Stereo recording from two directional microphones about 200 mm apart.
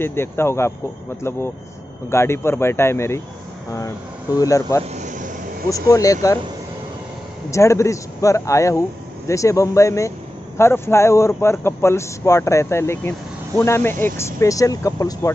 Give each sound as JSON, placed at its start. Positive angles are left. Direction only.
{"t": 0.0, "sound": "speech", "side_deg": 10}
{"t": 2.0, "sound": "speech", "side_deg": 15}
{"t": 4.9, "sound": "vehicle", "side_deg": -40}
{"t": 5.9, "sound": "speech", "side_deg": 15}
{"t": 7.5, "sound": "speech", "side_deg": 15}